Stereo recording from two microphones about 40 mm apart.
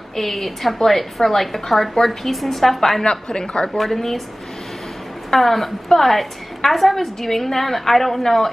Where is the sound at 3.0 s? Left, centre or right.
Centre.